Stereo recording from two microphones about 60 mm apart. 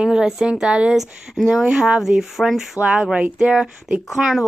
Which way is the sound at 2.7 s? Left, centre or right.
Centre.